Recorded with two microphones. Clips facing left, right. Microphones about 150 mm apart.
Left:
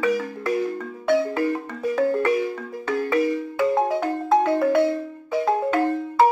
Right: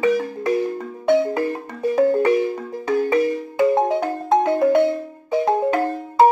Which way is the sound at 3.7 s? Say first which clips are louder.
Right 3 dB; 20° right (ahead or behind).